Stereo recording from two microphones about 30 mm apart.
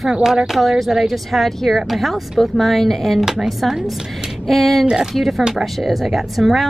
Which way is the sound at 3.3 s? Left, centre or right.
Centre.